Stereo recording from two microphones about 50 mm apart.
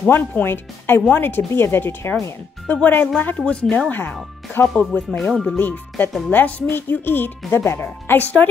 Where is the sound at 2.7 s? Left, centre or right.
Left.